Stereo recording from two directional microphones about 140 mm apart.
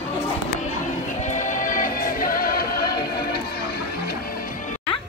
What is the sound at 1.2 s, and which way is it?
Music, 60° left (ahead or behind).